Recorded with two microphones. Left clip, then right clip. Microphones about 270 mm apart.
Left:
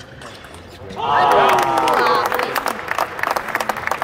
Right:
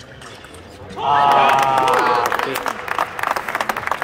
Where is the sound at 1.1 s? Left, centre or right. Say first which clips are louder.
Even; left.